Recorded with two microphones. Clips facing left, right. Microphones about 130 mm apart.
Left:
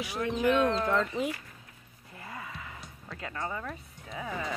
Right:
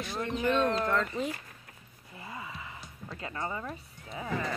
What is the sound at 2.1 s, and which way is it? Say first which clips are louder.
Gasp: even; 10° right (ahead or behind).